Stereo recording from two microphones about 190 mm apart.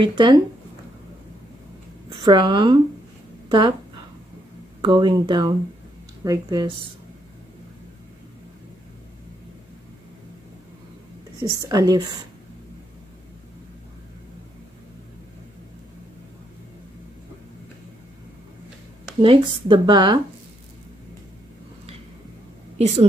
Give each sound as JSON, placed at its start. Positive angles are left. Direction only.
{"t": 0.0, "sound": "speech", "side_deg": -25}
{"t": 2.2, "sound": "speech", "side_deg": -25}
{"t": 4.8, "sound": "speech", "side_deg": -25}
{"t": 11.3, "sound": "speech", "side_deg": -20}
{"t": 19.2, "sound": "speech", "side_deg": -25}
{"t": 22.8, "sound": "a woman's voice", "side_deg": -35}